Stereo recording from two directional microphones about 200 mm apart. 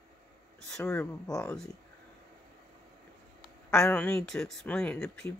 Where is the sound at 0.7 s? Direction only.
5° left (ahead or behind).